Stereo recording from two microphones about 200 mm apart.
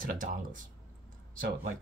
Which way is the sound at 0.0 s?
45° right (ahead or behind).